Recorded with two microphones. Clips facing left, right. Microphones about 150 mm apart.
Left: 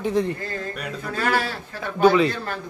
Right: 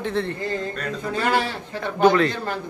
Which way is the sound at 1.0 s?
20° right (ahead or behind).